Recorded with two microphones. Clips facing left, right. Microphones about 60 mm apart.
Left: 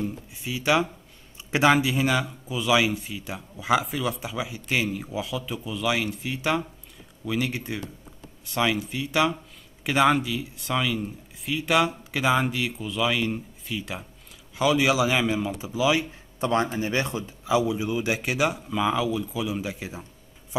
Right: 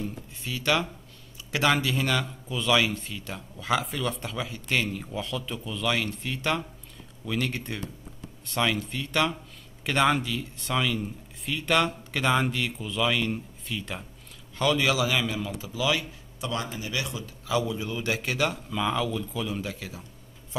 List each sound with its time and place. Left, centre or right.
0.0 s a man's voice: centre
16.3 s speech: left
17.5 s a man's voice: centre